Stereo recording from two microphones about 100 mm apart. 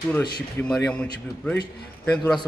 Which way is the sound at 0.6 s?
20° left (ahead or behind).